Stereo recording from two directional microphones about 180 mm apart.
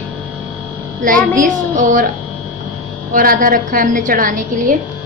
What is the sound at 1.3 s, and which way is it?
Speech, 45° right (ahead or behind).